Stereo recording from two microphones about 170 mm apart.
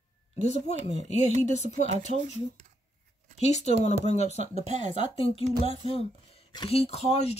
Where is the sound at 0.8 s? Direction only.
45° right (ahead or behind).